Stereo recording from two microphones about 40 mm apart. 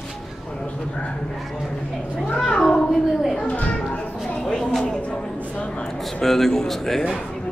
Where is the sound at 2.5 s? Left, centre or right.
Left.